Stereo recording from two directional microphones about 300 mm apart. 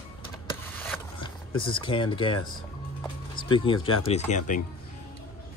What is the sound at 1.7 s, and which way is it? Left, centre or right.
Speech, centre.